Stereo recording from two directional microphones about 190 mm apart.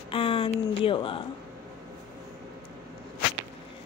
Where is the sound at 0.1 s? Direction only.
30° left (ahead or behind).